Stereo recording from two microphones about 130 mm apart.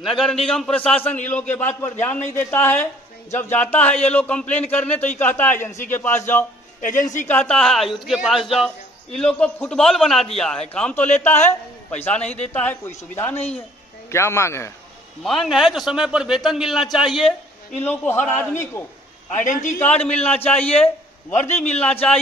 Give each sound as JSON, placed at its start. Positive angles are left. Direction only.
{"t": 0.0, "sound": "a man's voice", "side_deg": 0}
{"t": 6.8, "sound": "a woman's voice", "side_deg": 85}
{"t": 7.2, "sound": "a man's voice", "side_deg": 10}
{"t": 15.2, "sound": "a man's voice", "side_deg": 0}
{"t": 17.8, "sound": "a man's voice", "side_deg": 15}
{"t": 19.3, "sound": "a man's voice", "side_deg": 75}
{"t": 19.8, "sound": "a man's voice", "side_deg": 10}
{"t": 21.4, "sound": "a man's voice", "side_deg": 60}